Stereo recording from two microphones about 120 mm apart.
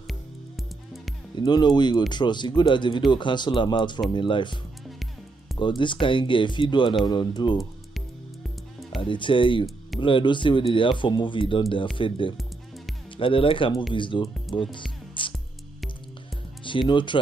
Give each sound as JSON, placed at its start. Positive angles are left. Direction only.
{"t": 1.3, "sound": "speech", "side_deg": 35}
{"t": 5.6, "sound": "speech", "side_deg": 40}
{"t": 9.0, "sound": "speech", "side_deg": 45}
{"t": 14.7, "sound": "music", "side_deg": 45}
{"t": 16.9, "sound": "speech", "side_deg": 40}